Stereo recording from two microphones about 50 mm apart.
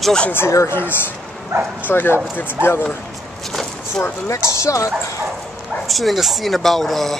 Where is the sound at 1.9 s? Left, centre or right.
Left.